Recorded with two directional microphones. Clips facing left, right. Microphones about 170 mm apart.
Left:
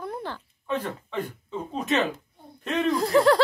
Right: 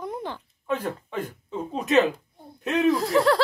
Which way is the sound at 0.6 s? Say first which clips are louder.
Right 2 dB; 5° right (ahead or behind).